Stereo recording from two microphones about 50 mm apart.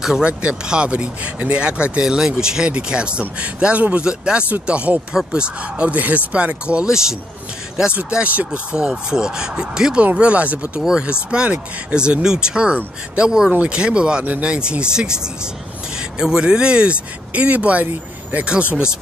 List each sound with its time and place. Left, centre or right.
0.2 s speech: right
8.0 s speech: right
8.5 s speech: centre
10.8 s speech: centre
11.2 s speech: right